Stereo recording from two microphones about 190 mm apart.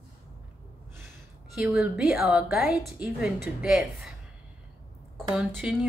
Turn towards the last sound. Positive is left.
turn(degrees=-10)  # may be behind; listen again after turning